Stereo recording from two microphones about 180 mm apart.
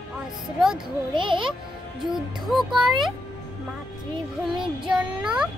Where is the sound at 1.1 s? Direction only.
25° right (ahead or behind).